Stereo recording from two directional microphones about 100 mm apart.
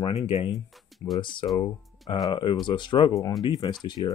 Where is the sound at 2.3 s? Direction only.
50° left (ahead or behind).